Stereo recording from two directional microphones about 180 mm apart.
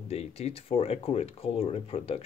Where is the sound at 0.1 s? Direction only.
35° left (ahead or behind).